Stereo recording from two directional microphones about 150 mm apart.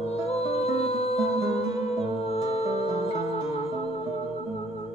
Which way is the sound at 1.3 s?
20° right (ahead or behind).